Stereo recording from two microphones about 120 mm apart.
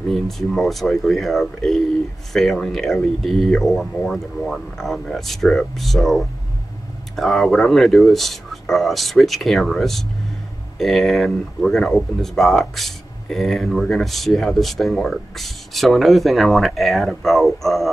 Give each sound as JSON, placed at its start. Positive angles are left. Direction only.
{"t": 0.1, "sound": "speech", "side_deg": 0}